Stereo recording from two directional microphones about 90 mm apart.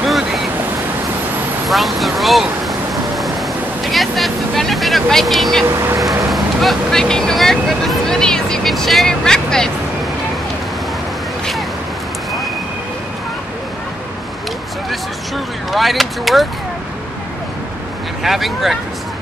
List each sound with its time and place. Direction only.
0.0 s waves: centre (ahead or behind)
1.7 s vehicle: centre (ahead or behind)
5.7 s speech: 35° right (ahead or behind)
6.3 s speech: centre (ahead or behind)
14.9 s speech: centre (ahead or behind)
18.2 s speech: 5° right (ahead or behind)